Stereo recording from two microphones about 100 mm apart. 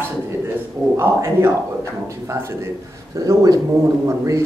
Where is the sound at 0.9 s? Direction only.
25° right (ahead or behind).